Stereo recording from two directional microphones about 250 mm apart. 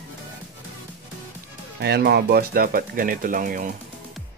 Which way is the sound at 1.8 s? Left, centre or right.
Right.